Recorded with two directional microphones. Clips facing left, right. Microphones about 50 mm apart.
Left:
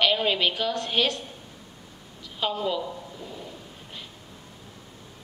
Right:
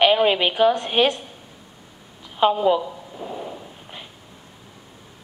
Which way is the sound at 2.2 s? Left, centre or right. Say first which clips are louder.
Right 10 dB; right.